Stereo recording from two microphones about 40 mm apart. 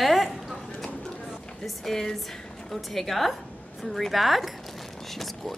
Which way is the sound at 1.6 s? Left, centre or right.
Centre.